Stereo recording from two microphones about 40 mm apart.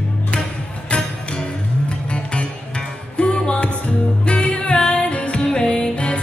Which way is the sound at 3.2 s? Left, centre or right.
Left.